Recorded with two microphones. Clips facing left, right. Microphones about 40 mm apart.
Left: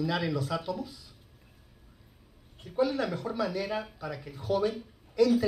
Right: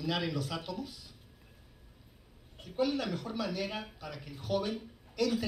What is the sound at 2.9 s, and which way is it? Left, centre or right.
Speech, left.